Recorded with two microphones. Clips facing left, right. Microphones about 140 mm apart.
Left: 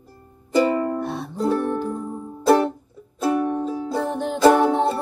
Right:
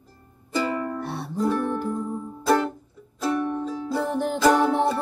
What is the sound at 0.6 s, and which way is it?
Music, 20° left (ahead or behind).